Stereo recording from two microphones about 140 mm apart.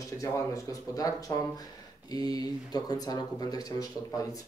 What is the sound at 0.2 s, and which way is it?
Speech, 25° left (ahead or behind).